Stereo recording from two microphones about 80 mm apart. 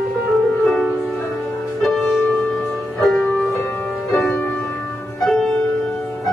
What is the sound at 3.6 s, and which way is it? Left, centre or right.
Music, left.